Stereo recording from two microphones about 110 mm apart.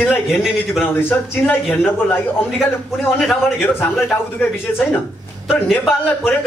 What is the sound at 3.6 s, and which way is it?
Speech, 15° left (ahead or behind).